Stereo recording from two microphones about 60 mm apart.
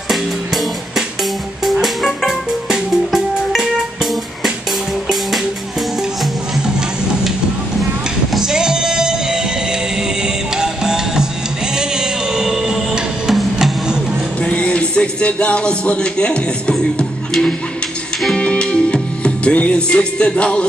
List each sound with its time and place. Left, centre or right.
0.1 s music: centre
8.3 s music: centre
14.4 s a sound: left
17.3 s music: centre
18.3 s music: centre